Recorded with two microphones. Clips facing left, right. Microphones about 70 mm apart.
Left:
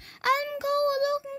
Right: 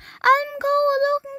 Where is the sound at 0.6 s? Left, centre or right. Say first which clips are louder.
Right 6 dB; right.